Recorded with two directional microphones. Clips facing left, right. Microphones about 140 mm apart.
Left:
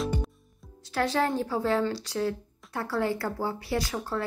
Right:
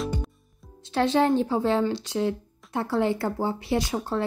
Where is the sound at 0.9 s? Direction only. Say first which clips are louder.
Right 5 dB; 25° right (ahead or behind).